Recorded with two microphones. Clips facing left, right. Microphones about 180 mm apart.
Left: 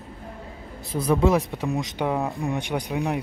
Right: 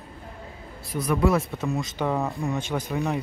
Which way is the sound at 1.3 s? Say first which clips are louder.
Left 2 dB; 15° left (ahead or behind).